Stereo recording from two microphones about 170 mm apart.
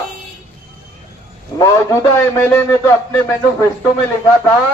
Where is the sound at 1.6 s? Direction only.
15° left (ahead or behind).